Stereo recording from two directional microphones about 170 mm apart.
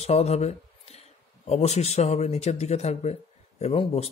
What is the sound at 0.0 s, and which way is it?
Speech, 40° left (ahead or behind).